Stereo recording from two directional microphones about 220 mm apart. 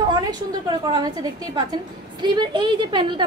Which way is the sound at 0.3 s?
20° right (ahead or behind).